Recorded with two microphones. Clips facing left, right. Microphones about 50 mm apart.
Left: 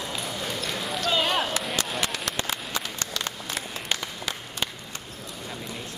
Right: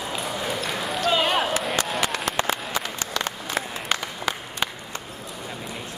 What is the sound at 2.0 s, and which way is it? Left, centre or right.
Applause, centre.